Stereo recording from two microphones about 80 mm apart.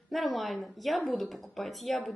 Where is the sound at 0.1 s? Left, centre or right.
Centre.